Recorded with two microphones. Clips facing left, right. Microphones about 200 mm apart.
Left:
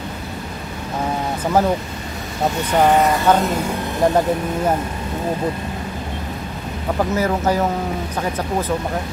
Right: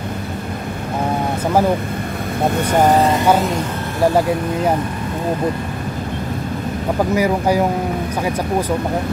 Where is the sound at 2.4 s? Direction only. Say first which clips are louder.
Right 2 dB; 55° right (ahead or behind).